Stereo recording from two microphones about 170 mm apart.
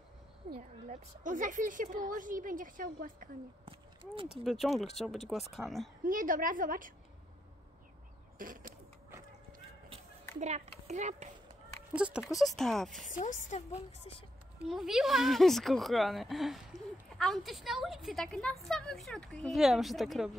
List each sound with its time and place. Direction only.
0.6 s a woman's voice: 50° right (ahead or behind)
4.5 s speech: centre (ahead or behind)
6.0 s a woman's voice: 55° right (ahead or behind)
8.4 s a woman's voice: 55° right (ahead or behind)
10.4 s a child's voice: 40° right (ahead or behind)
11.9 s speech: 5° right (ahead or behind)
13.1 s a woman's voice: 45° left (ahead or behind)
14.6 s speech: 5° right (ahead or behind)